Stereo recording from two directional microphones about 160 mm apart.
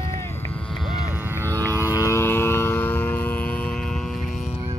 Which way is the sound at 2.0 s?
20° left (ahead or behind).